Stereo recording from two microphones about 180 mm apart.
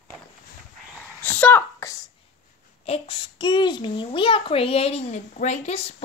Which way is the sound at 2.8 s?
30° left (ahead or behind).